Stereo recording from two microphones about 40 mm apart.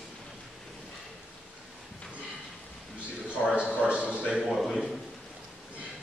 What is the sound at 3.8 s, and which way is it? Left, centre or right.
Speech, right.